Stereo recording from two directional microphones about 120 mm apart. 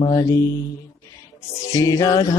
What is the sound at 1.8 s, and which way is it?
Mantra, 30° left (ahead or behind).